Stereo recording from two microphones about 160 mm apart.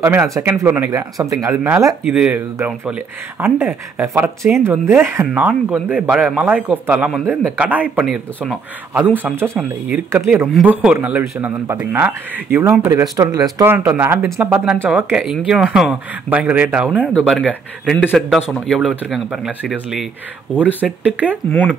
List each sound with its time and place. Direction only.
0.0 s speech: 15° right (ahead or behind)
12.8 s speech: 20° right (ahead or behind); by 19.7 s 5° right (ahead or behind)
20.8 s speech: 10° right (ahead or behind)
21.5 s speech: 10° left (ahead or behind)